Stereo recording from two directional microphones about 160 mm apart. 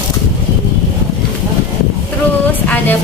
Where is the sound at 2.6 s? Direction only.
10° left (ahead or behind).